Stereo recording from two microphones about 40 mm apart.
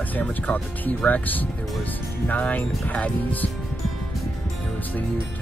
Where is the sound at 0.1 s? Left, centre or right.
Left.